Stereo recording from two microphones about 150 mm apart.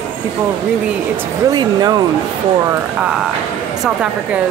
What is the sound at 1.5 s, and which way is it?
Speech, 25° right (ahead or behind).